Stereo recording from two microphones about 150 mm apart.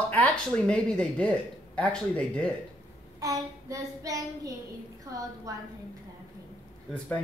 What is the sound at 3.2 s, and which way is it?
Child singing, 20° right (ahead or behind).